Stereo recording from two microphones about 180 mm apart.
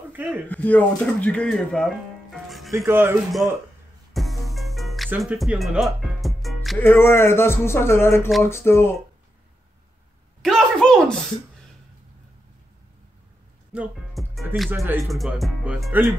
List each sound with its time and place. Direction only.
0.1 s speech: 10° right (ahead or behind)
0.5 s speech: 10° left (ahead or behind)
2.3 s music: centre (ahead or behind)
2.9 s speech: 10° right (ahead or behind)
4.1 s music: centre (ahead or behind)
6.8 s speech: 10° left (ahead or behind)
10.4 s a sound: 5° left (ahead or behind)
13.7 s music: centre (ahead or behind)
14.8 s speech: centre (ahead or behind)